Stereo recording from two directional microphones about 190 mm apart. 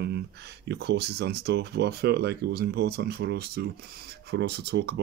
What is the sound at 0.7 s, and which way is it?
Speech, 60° right (ahead or behind).